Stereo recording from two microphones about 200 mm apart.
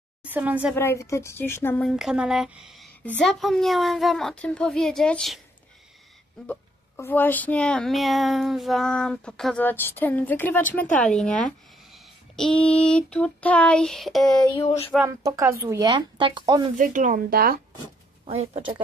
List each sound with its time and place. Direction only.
0.2 s a woman's voice: 10° right (ahead or behind)
0.7 s a woman's voice: 15° left (ahead or behind)
1.9 s speech: centre (ahead or behind)
6.4 s a woman's voice: 10° left (ahead or behind)
15.0 s speech: 15° right (ahead or behind)
16.7 s speech: 40° right (ahead or behind)
18.2 s speech: 30° right (ahead or behind)